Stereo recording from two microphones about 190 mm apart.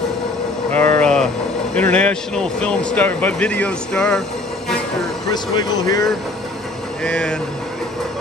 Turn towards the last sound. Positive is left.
turn(degrees=5)  # may be behind; listen again after turning